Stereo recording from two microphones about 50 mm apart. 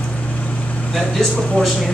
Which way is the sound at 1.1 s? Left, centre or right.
Centre.